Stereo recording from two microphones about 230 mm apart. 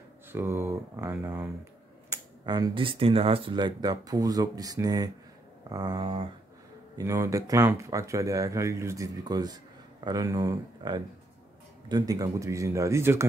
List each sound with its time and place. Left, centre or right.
0.3 s speech: centre